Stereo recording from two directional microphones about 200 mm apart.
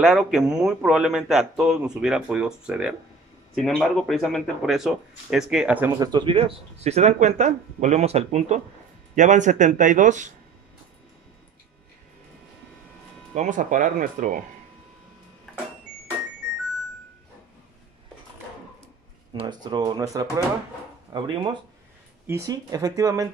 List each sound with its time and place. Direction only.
0.0 s a man's voice: 5° right (ahead or behind)
5.9 s speech: 20° right (ahead or behind); by 10.3 s 35° right (ahead or behind)
13.3 s speech: 40° right (ahead or behind)
19.3 s speech: 20° right (ahead or behind)